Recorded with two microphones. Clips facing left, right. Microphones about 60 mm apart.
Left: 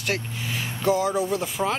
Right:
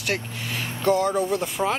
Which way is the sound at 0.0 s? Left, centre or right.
Centre.